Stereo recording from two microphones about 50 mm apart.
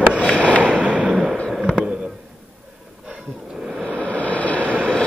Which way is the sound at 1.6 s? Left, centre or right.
Centre.